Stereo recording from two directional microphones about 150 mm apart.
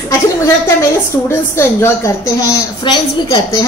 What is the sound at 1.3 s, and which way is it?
A woman's voice, 15° left (ahead or behind).